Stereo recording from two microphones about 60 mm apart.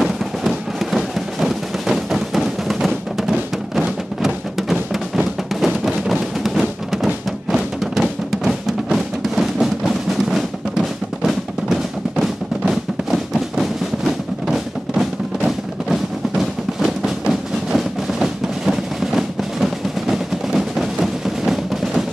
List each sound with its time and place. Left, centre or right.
0.0 s music: centre
11.7 s music: centre